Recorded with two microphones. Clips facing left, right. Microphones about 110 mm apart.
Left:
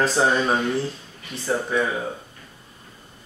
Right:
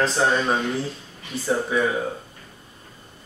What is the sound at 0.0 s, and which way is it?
Speech, 5° left (ahead or behind).